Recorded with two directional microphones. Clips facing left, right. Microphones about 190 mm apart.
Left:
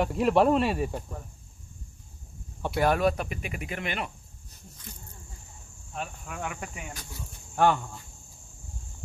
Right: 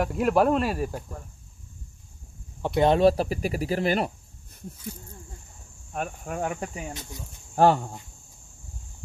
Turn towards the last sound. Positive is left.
turn(degrees=-35)  # may be behind; listen again after turning